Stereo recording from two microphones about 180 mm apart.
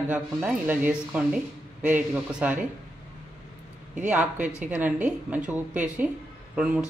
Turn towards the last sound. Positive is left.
turn(degrees=-5)  # may be behind; listen again after turning